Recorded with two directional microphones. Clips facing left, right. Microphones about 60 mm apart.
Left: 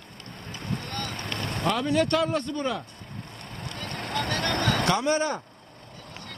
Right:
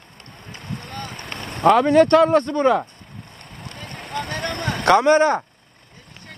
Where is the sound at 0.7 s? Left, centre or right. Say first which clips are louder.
Right 2 dB; centre.